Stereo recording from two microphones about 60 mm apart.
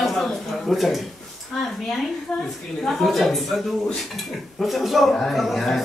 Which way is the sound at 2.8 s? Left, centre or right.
Centre.